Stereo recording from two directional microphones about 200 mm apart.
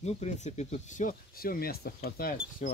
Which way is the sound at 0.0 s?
35° left (ahead or behind).